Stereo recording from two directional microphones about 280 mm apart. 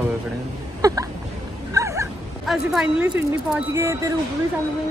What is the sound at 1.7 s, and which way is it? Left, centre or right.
Cat, centre.